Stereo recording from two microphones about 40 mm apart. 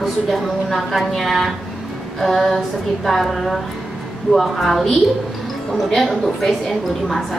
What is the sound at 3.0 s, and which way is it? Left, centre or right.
A woman's voice, centre.